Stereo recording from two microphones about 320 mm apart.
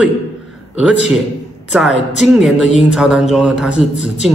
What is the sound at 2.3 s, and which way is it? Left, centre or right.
A man's voice, centre.